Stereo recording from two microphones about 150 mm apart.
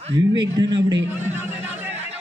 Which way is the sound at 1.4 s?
15° right (ahead or behind).